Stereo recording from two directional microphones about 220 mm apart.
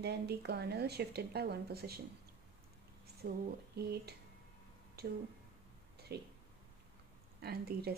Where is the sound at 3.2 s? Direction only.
45° right (ahead or behind).